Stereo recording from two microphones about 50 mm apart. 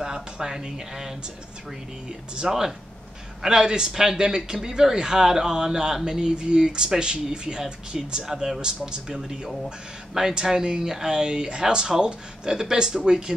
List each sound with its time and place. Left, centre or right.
0.0 s a man's voice: centre